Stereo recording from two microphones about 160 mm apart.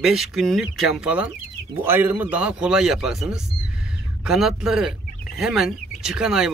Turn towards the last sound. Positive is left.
turn(degrees=-5)  # may be behind; listen again after turning